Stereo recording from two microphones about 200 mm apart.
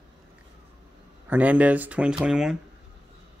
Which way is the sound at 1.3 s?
10° right (ahead or behind).